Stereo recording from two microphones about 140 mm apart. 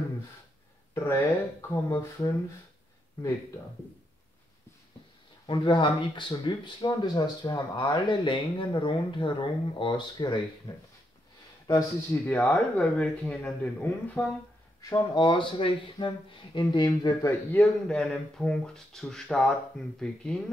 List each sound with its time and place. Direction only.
0.9 s speech: 20° left (ahead or behind)
5.5 s speech: 35° left (ahead or behind)
11.6 s speech: 30° left (ahead or behind)
12.3 s speech: 10° left (ahead or behind)
15.0 s speech: 35° left (ahead or behind)
17.6 s speech: 5° left (ahead or behind)